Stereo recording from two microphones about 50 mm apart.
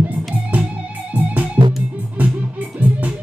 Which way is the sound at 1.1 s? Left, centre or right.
Right.